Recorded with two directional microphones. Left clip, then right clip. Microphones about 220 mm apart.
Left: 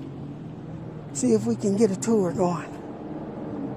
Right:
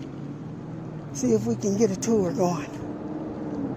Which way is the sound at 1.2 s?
15° left (ahead or behind).